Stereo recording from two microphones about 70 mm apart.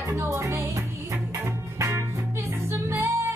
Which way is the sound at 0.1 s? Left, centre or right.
Right.